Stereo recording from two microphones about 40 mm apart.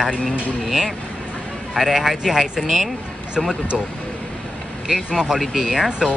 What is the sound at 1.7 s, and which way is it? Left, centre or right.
Speech, centre.